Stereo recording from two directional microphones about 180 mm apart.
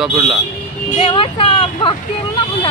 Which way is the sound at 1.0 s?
30° left (ahead or behind).